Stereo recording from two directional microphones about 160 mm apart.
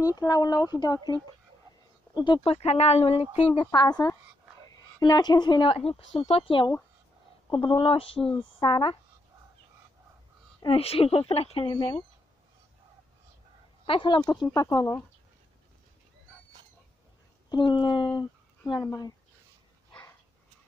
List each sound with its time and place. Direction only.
0.0 s speech: 20° left (ahead or behind)
2.1 s speech: 30° left (ahead or behind)
10.6 s speech: 35° left (ahead or behind)
13.8 s speech: 30° left (ahead or behind)
17.5 s speech: 30° left (ahead or behind)